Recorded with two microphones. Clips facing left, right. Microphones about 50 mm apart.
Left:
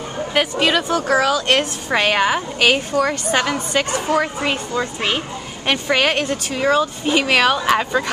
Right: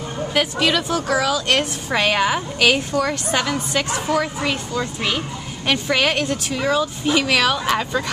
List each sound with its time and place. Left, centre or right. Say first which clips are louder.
0.3 s a woman's voice: left 2 dB; centre
5.7 s speech: left 1 dB; centre